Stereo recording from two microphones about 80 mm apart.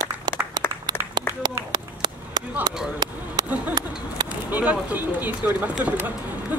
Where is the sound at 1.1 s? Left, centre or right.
Right.